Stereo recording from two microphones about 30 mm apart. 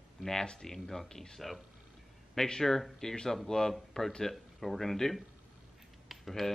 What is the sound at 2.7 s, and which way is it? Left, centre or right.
Speech, centre.